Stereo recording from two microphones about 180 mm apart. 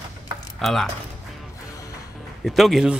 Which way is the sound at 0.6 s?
Centre (ahead or behind).